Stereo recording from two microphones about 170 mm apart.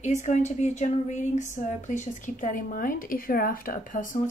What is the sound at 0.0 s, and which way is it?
Speech, 45° left (ahead or behind).